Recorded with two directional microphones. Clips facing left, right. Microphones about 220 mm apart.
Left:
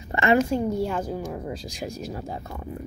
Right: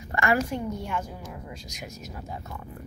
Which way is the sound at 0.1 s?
25° left (ahead or behind).